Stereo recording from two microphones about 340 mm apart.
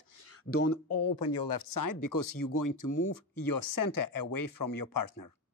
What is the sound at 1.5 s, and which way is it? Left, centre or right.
Speech, left.